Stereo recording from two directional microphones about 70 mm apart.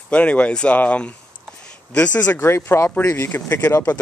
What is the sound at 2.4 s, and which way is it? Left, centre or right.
Speech, left.